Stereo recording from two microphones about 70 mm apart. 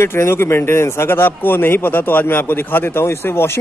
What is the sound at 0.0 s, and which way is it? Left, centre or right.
A man's voice, left.